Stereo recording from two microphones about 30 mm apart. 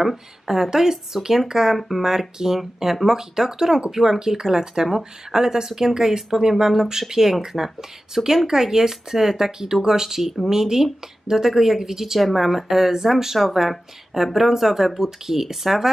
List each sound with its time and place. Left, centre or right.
0.0 s speech: centre